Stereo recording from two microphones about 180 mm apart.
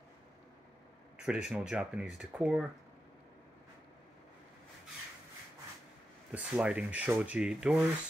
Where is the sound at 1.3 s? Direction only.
5° right (ahead or behind).